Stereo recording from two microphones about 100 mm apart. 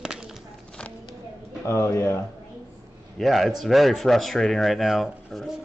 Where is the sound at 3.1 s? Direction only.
Centre (ahead or behind).